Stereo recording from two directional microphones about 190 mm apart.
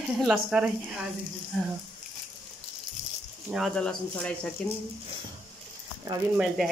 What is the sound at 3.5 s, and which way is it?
Speech, centre (ahead or behind).